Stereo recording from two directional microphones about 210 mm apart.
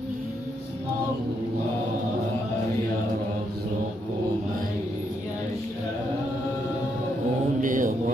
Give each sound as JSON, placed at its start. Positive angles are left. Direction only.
{"t": 7.6, "sound": "mantra", "side_deg": -40}